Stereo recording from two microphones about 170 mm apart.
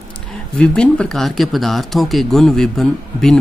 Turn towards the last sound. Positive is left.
turn(degrees=5)  # may be behind; listen again after turning